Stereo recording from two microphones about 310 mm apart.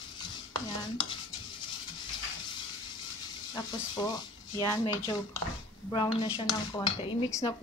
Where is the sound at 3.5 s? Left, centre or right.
Centre.